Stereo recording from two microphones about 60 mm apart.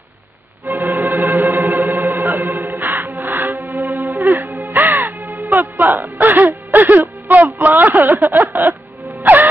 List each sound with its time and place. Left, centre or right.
0.7 s music: right
4.3 s caw: right
7.6 s a sound: right
9.2 s music: right